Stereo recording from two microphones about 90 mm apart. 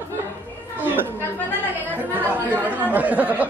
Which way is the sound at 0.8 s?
20° right (ahead or behind).